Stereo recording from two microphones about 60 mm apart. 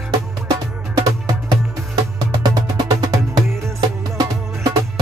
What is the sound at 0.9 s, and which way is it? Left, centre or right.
Music, right.